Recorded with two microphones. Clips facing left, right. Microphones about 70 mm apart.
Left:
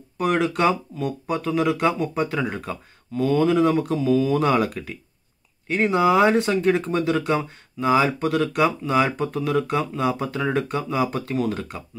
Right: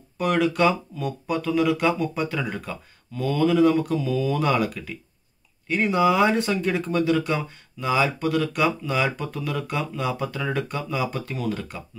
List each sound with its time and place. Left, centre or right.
0.2 s speech: left